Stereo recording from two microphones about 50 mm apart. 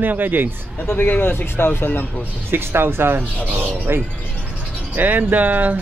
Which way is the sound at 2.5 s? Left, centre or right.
Right.